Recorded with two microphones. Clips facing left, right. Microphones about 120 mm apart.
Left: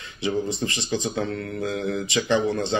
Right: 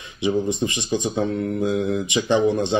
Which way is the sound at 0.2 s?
20° right (ahead or behind).